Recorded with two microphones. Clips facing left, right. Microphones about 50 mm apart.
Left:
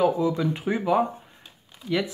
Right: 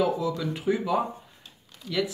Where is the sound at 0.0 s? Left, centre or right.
Left.